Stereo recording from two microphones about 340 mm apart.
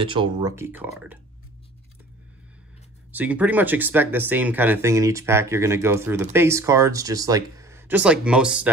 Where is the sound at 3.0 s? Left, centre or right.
Centre.